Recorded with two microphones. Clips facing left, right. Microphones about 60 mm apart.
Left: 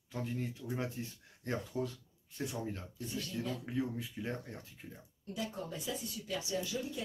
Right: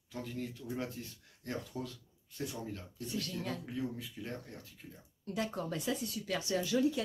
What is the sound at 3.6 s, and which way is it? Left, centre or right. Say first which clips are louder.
Speech: left 2 dB; left.